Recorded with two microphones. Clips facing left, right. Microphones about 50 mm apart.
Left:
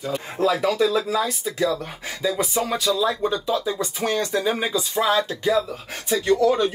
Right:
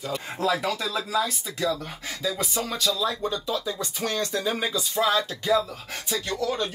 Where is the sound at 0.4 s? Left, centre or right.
Centre.